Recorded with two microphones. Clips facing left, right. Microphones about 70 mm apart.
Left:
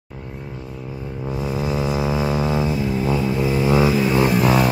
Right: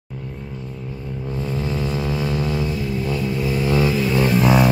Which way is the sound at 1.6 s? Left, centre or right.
Centre.